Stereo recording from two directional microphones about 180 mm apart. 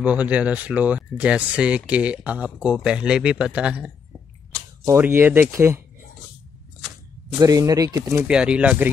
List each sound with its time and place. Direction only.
0.0 s speech: 10° right (ahead or behind)
7.3 s speech: 20° right (ahead or behind)
8.3 s speech: 5° right (ahead or behind)